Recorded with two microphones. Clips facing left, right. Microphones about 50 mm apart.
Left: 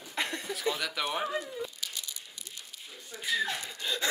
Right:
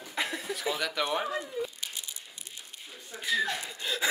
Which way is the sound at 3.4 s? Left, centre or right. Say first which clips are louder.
Right 2 dB; centre.